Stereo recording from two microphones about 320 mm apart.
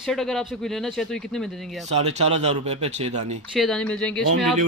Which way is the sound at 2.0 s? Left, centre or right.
Centre.